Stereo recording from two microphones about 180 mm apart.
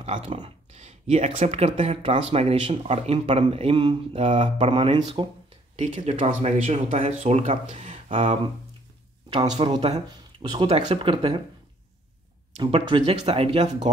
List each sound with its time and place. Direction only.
0.0 s speech: 35° right (ahead or behind)
9.4 s speech: 25° right (ahead or behind)
12.5 s speech: 30° right (ahead or behind)